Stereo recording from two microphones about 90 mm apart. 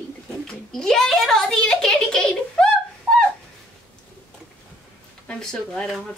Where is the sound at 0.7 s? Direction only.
5° left (ahead or behind).